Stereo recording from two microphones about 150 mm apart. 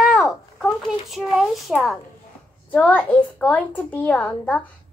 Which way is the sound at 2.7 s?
10° left (ahead or behind).